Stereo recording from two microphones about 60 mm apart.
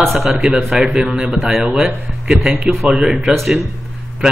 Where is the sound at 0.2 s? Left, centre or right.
Centre.